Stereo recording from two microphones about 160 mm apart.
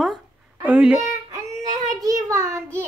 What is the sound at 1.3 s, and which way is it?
Child singing, 20° right (ahead or behind).